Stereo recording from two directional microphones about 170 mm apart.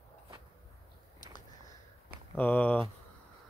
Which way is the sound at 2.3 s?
10° left (ahead or behind).